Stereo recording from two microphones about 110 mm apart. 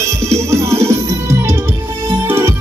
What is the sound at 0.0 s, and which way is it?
Music, 25° right (ahead or behind).